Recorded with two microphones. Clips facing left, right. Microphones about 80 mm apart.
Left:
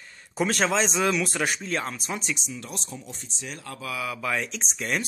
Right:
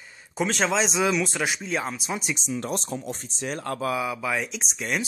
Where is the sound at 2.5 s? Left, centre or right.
Right.